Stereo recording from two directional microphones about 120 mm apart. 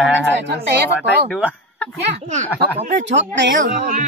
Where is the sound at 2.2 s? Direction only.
75° right (ahead or behind).